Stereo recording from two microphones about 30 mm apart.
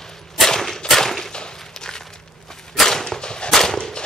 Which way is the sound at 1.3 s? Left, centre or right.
Left.